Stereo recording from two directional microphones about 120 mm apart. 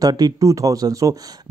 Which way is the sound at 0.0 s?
35° right (ahead or behind).